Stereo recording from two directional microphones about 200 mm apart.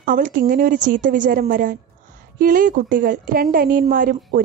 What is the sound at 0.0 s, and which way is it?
A woman's voice, 45° right (ahead or behind).